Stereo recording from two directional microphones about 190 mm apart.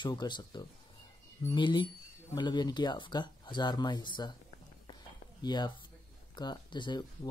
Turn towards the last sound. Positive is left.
turn(degrees=20)  # may be behind; listen again after turning